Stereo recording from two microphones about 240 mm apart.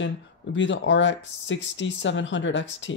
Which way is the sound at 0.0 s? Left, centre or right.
Left.